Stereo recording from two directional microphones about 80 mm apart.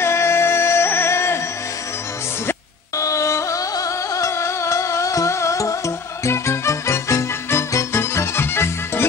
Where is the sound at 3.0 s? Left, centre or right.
Left.